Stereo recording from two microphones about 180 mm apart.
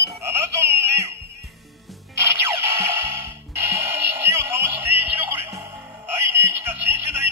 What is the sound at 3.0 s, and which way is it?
Music, 15° right (ahead or behind).